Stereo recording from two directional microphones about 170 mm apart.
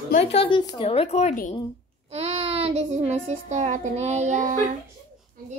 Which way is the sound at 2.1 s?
40° right (ahead or behind).